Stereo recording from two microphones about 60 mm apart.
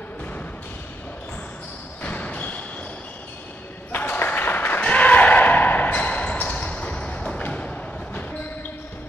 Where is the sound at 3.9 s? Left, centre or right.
Left.